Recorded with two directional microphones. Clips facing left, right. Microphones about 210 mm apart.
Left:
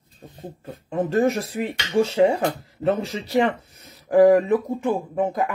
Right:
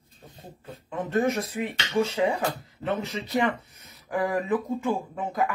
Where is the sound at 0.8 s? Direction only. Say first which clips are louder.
Left 5 dB; 30° left (ahead or behind).